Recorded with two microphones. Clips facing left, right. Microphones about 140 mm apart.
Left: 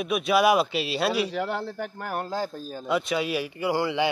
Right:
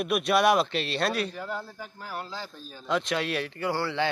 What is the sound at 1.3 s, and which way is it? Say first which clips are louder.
Speech: left 7 dB; 80° left.